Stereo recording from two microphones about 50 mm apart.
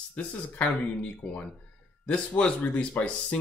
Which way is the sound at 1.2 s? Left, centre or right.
Left.